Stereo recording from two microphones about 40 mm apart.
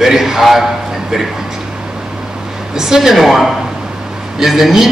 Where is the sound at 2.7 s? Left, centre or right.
Centre.